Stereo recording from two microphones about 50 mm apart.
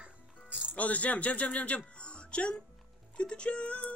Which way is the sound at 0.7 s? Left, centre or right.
Left.